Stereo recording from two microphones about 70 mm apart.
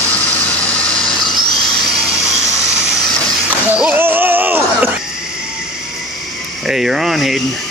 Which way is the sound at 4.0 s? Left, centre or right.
Right.